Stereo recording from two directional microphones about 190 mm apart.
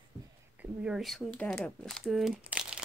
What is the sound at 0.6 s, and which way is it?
Speech, 5° right (ahead or behind).